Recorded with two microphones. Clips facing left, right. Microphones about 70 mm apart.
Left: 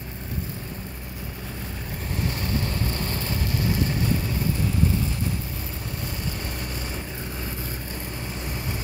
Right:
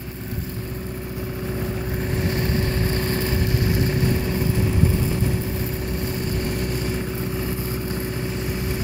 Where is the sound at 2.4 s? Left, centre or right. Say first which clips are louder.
Right 4 dB; right.